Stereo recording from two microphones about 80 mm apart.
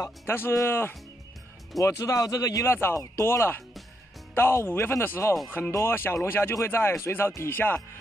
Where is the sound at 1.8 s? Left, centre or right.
Left.